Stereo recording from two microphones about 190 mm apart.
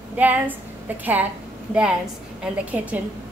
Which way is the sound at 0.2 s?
10° right (ahead or behind).